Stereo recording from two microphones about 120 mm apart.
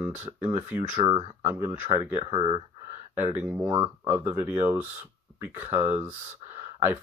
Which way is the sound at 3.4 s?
15° right (ahead or behind).